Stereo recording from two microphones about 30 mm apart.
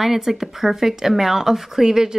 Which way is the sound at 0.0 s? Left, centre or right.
Centre.